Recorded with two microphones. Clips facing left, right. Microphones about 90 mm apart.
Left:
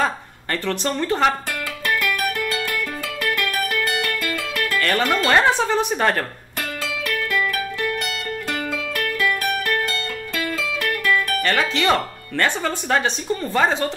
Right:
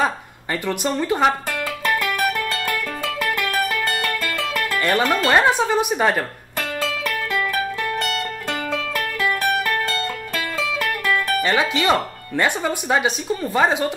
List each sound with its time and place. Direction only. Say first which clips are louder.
0.0 s speech: right 1 dB; 10° right (ahead or behind)
2.0 s music: right 1 dB; 25° right (ahead or behind)
4.7 s speech: right 1 dB; 15° right (ahead or behind)
6.8 s music: right 1 dB; 35° right (ahead or behind)
9.2 s music: right 3 dB; 30° right (ahead or behind)
11.2 s speech: right 2 dB; 15° right (ahead or behind)